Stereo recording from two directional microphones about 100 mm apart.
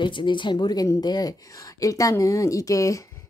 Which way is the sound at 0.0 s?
50° left (ahead or behind).